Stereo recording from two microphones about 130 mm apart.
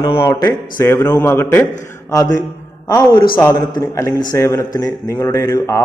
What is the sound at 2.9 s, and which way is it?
Speech, 35° left (ahead or behind).